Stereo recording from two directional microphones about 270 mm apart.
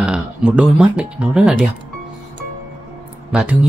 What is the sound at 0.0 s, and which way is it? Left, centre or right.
Speech, centre.